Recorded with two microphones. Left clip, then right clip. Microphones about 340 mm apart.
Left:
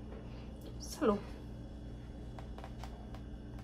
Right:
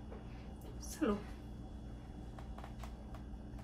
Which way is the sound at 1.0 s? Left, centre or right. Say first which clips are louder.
Left 5 dB; centre.